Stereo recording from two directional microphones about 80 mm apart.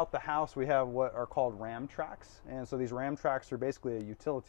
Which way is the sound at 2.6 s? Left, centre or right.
Centre.